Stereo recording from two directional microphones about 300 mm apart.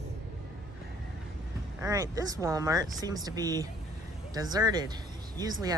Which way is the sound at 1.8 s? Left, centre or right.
Centre.